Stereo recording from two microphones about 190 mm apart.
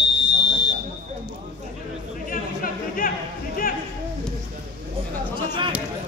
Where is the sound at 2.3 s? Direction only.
45° left (ahead or behind).